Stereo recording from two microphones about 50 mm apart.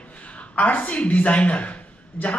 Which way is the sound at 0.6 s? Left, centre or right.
Left.